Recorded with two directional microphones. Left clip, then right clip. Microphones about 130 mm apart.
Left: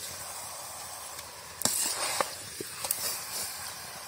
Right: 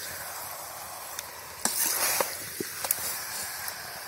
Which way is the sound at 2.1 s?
25° right (ahead or behind).